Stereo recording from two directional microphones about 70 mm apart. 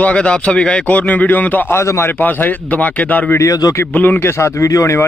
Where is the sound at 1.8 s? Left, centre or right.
Left.